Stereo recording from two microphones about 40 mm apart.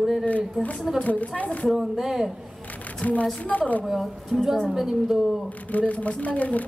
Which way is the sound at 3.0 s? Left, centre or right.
Left.